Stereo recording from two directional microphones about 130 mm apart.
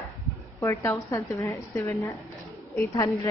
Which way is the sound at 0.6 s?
25° left (ahead or behind).